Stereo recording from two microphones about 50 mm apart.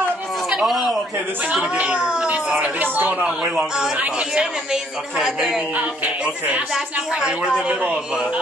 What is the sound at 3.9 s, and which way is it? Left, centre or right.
A man's voice, right.